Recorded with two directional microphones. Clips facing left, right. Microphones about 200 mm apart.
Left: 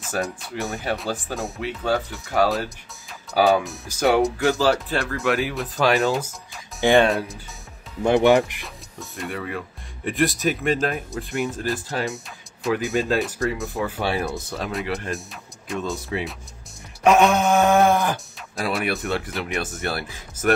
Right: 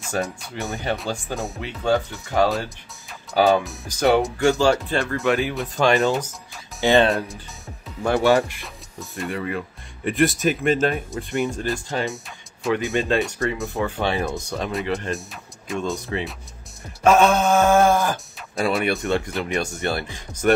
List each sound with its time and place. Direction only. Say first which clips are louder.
0.0 s speech: right 1 dB; centre (ahead or behind)
6.8 s speech: even; 15° left (ahead or behind)
7.1 s speech: even; centre (ahead or behind)
8.0 s mantra: left 2 dB; 20° left (ahead or behind)
9.1 s speech: right 3 dB; centre (ahead or behind)
17.0 s mantra: even; 15° left (ahead or behind)
18.6 s speech: right 3 dB; centre (ahead or behind)